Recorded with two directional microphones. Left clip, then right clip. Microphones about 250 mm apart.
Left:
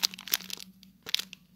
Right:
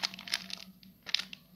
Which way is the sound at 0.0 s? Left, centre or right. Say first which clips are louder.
Left 4 dB; left.